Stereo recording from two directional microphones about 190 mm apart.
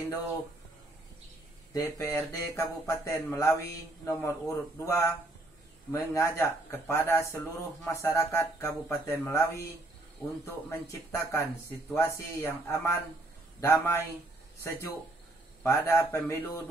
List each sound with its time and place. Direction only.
1.7 s a man's voice: 15° left (ahead or behind)